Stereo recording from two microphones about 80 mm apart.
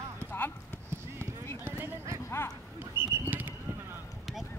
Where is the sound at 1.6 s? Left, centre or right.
Right.